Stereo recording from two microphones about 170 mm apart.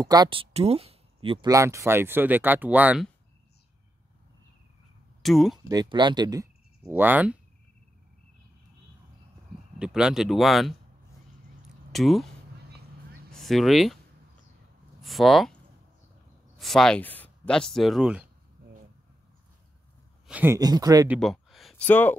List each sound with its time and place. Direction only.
0.0 s speech: 25° right (ahead or behind)
1.5 s speech: 20° right (ahead or behind)
5.2 s speech: centre (ahead or behind)
5.7 s speech: 25° right (ahead or behind)
6.8 s speech: 10° right (ahead or behind)
9.8 s speech: 5° right (ahead or behind)
11.9 s speech: centre (ahead or behind)
13.3 s speech: centre (ahead or behind)
15.0 s speech: centre (ahead or behind)
16.5 s speech: centre (ahead or behind)
20.2 s speech: 10° right (ahead or behind)
20.5 s speech: 20° right (ahead or behind)
21.2 s a sound: centre (ahead or behind)
21.8 s speech: 10° left (ahead or behind)